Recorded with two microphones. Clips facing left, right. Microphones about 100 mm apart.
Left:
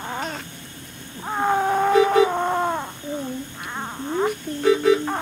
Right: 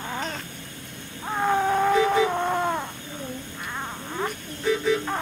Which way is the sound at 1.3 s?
15° left (ahead or behind).